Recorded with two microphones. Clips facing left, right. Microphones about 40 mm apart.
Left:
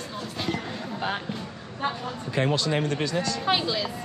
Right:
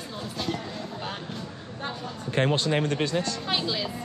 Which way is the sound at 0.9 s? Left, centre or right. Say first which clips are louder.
Left 5 dB; left.